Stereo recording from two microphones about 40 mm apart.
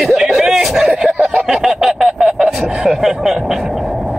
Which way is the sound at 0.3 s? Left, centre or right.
Centre.